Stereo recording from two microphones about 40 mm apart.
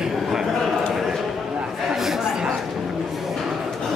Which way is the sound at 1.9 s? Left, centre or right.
Centre.